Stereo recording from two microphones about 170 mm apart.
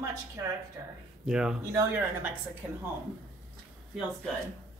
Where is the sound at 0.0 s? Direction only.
20° right (ahead or behind).